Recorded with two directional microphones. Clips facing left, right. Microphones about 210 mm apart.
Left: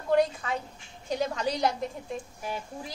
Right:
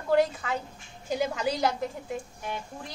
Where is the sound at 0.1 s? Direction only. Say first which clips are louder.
Even; 5° right (ahead or behind).